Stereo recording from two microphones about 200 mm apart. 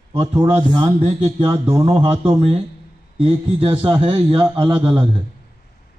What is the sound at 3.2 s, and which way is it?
Speech, 25° right (ahead or behind).